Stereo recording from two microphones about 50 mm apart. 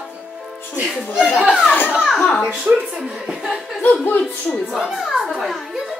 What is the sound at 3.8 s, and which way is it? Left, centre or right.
Speech, left.